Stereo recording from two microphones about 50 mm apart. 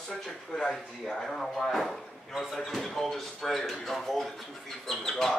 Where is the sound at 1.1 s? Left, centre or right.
Centre.